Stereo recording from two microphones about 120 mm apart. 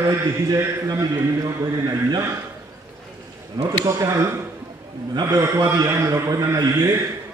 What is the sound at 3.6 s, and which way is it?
A man's voice, 30° right (ahead or behind).